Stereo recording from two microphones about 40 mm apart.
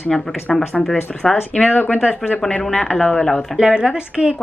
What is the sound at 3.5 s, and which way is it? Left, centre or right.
Speech, centre.